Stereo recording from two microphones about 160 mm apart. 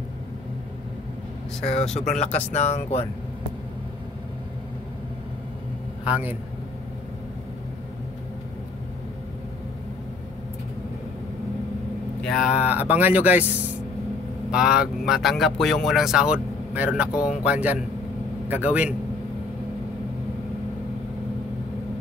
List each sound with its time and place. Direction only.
2.0 s speech: 45° left (ahead or behind)
12.2 s speech: centre (ahead or behind)